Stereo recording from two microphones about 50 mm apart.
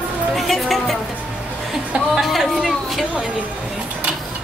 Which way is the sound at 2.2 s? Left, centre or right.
Centre.